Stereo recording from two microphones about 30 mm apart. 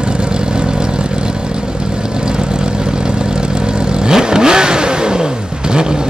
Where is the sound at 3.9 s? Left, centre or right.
Right.